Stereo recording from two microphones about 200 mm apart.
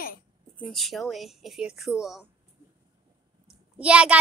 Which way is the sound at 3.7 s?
5° right (ahead or behind).